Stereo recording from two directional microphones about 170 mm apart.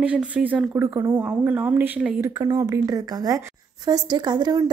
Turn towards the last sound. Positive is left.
turn(degrees=-25)  # may be behind; listen again after turning